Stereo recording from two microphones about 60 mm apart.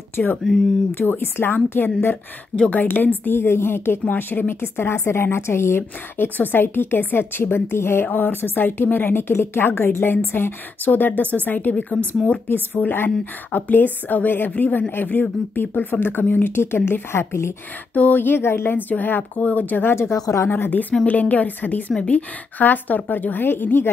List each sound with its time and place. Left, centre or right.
0.1 s a woman's voice: left
2.5 s a woman's voice: left
17.9 s a woman's voice: left
19.7 s speech: left
20.2 s a woman's voice: left
20.4 s a woman's voice: left
20.9 s a woman's voice: left
21.9 s a woman's voice: centre
22.6 s a woman's voice: left